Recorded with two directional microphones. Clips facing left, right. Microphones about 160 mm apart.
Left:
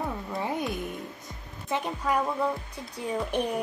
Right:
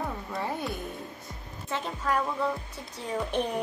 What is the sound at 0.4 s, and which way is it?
Music, 15° left (ahead or behind).